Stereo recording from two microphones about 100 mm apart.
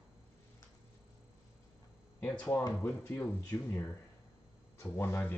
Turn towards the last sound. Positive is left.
turn(degrees=20)  # may be behind; listen again after turning